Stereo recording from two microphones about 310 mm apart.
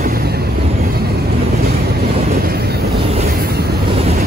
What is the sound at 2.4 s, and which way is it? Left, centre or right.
Vehicle, right.